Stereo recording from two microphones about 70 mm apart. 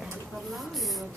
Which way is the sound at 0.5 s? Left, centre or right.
Centre.